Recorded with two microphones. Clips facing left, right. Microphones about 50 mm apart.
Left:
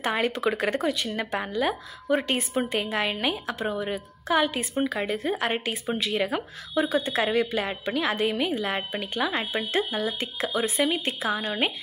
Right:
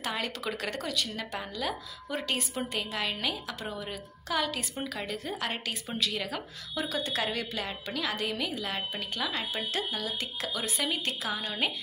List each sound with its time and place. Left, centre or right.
0.0 s a woman's voice: left